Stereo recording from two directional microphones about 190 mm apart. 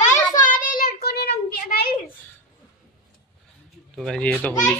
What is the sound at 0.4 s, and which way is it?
Child singing, 45° left (ahead or behind).